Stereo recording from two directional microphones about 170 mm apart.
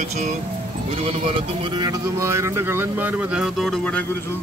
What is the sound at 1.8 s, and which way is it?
Speech, 20° right (ahead or behind).